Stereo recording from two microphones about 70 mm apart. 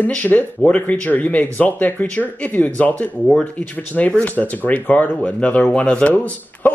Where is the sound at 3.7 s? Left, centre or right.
Left.